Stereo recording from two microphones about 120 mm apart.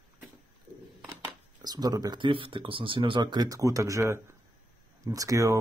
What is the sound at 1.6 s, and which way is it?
Speech, 35° right (ahead or behind).